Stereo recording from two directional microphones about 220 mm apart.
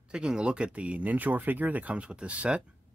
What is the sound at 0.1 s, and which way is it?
Speech, 5° right (ahead or behind).